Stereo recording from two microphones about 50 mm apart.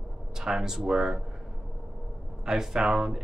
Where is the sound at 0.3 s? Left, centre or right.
Centre.